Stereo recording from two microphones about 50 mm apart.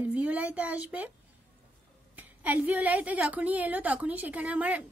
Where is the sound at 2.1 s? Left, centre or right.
Right.